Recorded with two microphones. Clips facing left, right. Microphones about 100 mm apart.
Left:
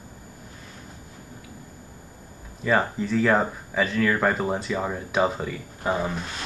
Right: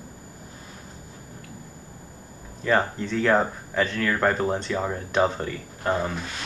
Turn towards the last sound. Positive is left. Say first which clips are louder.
# even
turn(degrees=5)  # may be behind; listen again after turning